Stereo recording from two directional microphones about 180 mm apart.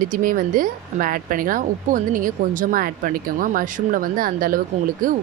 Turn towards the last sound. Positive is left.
turn(degrees=-50)  # may be behind; listen again after turning